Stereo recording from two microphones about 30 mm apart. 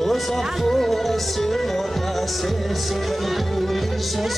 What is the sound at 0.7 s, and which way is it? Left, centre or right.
Music, centre.